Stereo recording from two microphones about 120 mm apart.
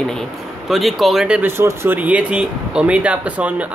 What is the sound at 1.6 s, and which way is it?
Speech, 20° right (ahead or behind).